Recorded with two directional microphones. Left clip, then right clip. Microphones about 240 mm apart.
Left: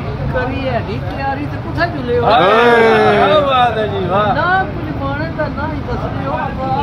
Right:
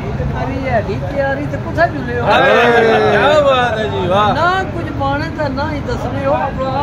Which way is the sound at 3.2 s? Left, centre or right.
Right.